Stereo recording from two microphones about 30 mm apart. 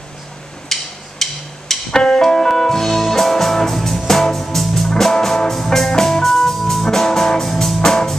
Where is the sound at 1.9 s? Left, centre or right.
Left.